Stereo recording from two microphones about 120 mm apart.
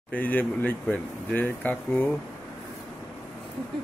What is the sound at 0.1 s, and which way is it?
Speech, 15° left (ahead or behind).